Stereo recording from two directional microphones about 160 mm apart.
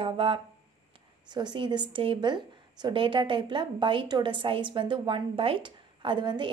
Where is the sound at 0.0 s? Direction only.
35° right (ahead or behind).